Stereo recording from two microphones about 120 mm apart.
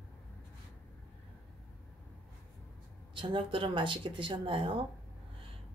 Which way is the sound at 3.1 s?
45° right (ahead or behind).